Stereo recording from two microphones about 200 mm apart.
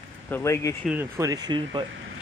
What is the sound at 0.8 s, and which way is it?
Speech, 10° right (ahead or behind).